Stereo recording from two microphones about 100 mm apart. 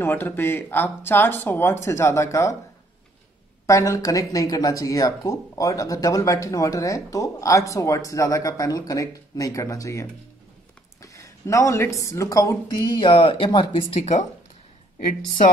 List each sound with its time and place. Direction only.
0.0 s speech: 20° left (ahead or behind)
3.6 s speech: 35° left (ahead or behind); by 13.7 s 55° left (ahead or behind)